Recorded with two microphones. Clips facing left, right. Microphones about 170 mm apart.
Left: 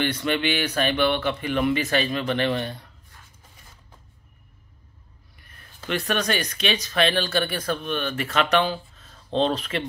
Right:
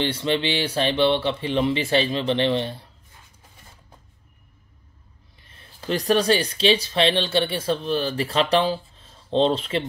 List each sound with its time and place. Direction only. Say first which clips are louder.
0.0 s speech: right 1 dB; 25° right (ahead or behind)
5.4 s speech: right 2 dB; 30° right (ahead or behind)